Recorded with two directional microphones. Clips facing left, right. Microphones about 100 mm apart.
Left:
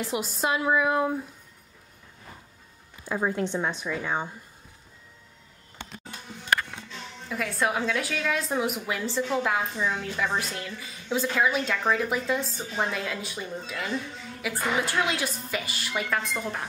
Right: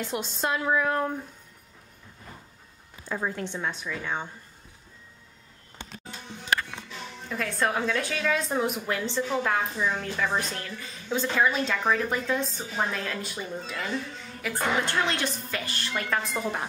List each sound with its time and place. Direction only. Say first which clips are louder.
0.0 s a woman's voice: left 2 dB; 5° left (ahead or behind)
3.1 s a woman's voice: left 4 dB; 15° left (ahead or behind)
6.9 s a woman's voice: even; 5° left (ahead or behind)